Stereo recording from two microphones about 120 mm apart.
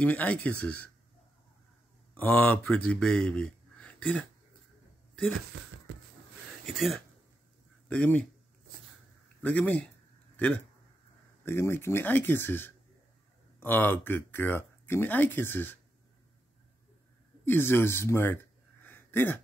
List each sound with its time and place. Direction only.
0.0 s speech: 10° left (ahead or behind)
2.1 s speech: 15° left (ahead or behind)
6.6 s speech: centre (ahead or behind)
7.9 s speech: 10° left (ahead or behind)
9.4 s speech: 15° left (ahead or behind)
17.5 s a man's voice: 20° left (ahead or behind)